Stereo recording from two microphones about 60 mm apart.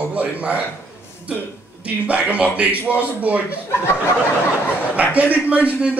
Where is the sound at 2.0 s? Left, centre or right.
Right.